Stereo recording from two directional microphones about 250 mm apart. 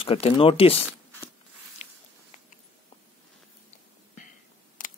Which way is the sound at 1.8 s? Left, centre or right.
Left.